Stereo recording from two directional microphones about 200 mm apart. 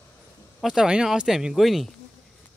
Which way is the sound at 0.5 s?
Centre (ahead or behind).